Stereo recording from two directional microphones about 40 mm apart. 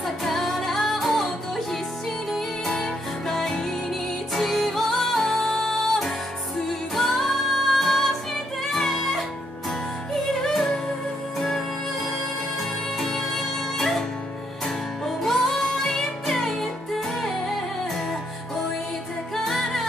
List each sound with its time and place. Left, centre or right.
0.0 s music: centre
10.4 s music: centre
13.0 s music: centre
15.2 s music: centre
19.3 s music: centre